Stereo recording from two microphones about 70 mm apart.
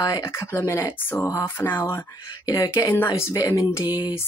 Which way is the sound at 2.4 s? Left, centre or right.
Left.